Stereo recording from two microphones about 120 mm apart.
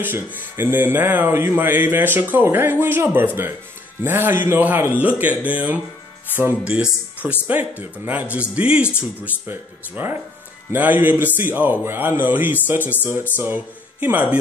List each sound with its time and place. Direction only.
0.0 s speech: 15° right (ahead or behind)